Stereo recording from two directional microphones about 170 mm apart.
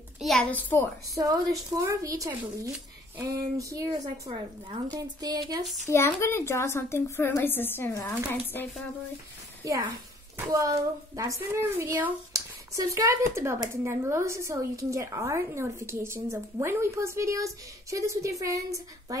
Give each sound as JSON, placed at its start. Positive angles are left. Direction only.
{"t": 0.2, "sound": "a child's voice", "side_deg": 5}
{"t": 1.1, "sound": "a woman's voice", "side_deg": -20}
{"t": 4.9, "sound": "a woman's voice", "side_deg": -20}
{"t": 5.9, "sound": "a woman's voice", "side_deg": 15}
{"t": 9.6, "sound": "a woman's voice", "side_deg": -20}